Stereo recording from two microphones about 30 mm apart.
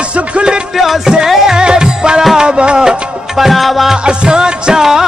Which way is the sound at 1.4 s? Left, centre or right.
Right.